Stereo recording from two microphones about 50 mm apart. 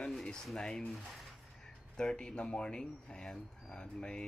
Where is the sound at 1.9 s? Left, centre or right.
Centre.